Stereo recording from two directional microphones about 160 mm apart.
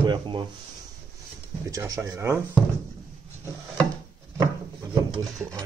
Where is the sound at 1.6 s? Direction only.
20° right (ahead or behind).